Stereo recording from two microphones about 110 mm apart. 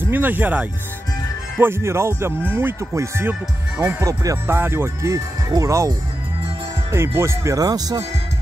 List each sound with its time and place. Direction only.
0.0 s speech: 15° right (ahead or behind)
7.2 s speech: 25° right (ahead or behind)